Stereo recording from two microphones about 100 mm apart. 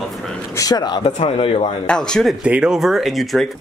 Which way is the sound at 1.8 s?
5° left (ahead or behind).